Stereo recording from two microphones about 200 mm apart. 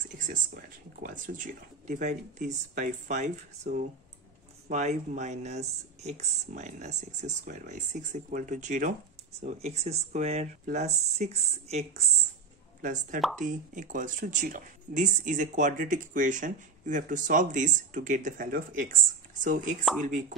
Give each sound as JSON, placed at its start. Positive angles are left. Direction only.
{"t": 0.3, "sound": "speech", "side_deg": -45}
{"t": 20.1, "sound": "speech", "side_deg": -40}